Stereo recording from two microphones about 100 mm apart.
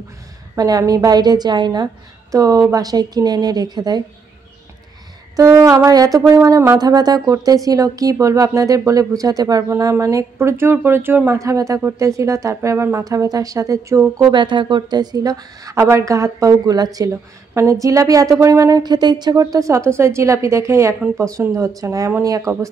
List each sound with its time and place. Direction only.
0.6 s speech: 40° right (ahead or behind)
2.3 s speech: 35° right (ahead or behind)
5.3 s speech: 35° right (ahead or behind)
14.3 s speech: 50° right (ahead or behind); by 18.8 s 30° right (ahead or behind)
18.8 s speech: 45° right (ahead or behind)